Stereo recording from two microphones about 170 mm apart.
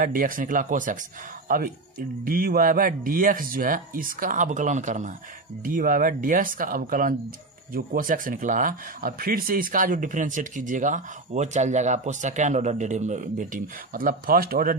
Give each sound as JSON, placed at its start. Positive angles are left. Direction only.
{"t": 0.0, "sound": "speech", "side_deg": -55}